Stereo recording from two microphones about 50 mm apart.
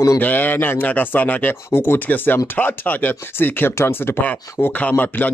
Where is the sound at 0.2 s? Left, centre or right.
Left.